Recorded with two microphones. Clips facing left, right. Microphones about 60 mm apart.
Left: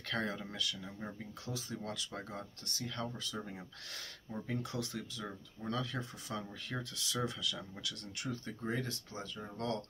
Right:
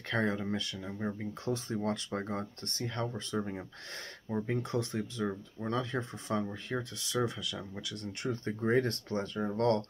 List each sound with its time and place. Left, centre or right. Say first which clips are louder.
0.1 s speech: right 7 dB; right
1.4 s speech: right 9 dB; right